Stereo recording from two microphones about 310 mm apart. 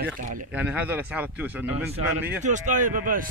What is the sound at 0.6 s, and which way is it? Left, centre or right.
Speech, centre.